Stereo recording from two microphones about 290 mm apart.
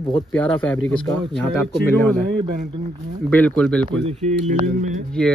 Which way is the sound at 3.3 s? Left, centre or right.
Centre.